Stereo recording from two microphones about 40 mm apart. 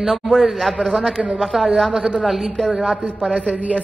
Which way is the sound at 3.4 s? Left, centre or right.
Right.